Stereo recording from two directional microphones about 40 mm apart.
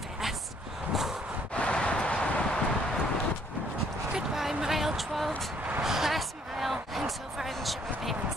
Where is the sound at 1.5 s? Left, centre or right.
Left.